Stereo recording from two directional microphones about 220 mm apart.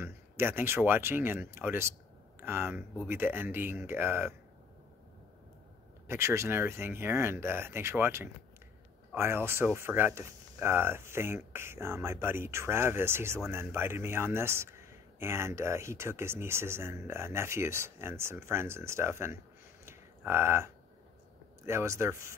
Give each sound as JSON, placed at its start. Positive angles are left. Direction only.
{"t": 0.0, "sound": "a man's voice", "side_deg": -10}
{"t": 6.0, "sound": "a man's voice", "side_deg": -10}